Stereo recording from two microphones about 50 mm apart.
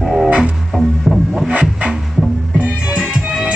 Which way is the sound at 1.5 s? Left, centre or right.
Right.